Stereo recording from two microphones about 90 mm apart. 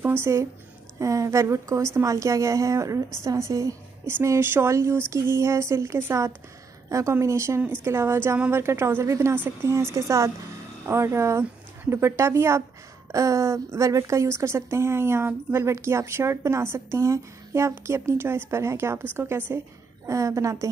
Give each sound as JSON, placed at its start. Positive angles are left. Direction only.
{"t": 0.0, "sound": "a woman's voice", "side_deg": -25}
{"t": 20.1, "sound": "a woman's voice", "side_deg": -35}